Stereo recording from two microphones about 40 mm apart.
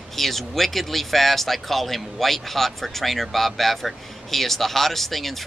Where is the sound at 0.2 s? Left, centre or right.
Centre.